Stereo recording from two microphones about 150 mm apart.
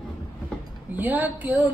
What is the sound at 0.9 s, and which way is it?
Speech, 10° right (ahead or behind).